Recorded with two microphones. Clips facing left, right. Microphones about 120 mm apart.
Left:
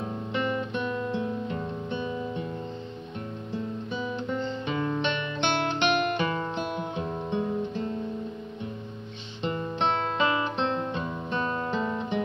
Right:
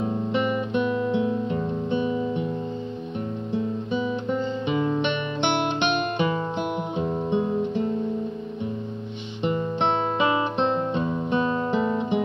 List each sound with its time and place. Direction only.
0.0 s music: 15° right (ahead or behind)
4.4 s music: 15° right (ahead or behind)
9.4 s guitar: 15° right (ahead or behind)